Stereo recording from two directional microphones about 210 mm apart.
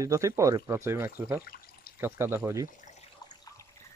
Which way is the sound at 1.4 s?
45° left (ahead or behind).